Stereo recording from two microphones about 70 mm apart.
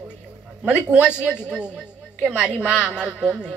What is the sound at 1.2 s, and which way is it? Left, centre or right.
Speech, left.